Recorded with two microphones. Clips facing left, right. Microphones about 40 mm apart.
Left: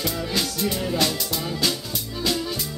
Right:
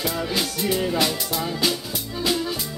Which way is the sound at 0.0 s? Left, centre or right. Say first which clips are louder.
Right 1 dB; centre.